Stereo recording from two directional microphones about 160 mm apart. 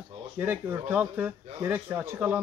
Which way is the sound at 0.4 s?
15° right (ahead or behind).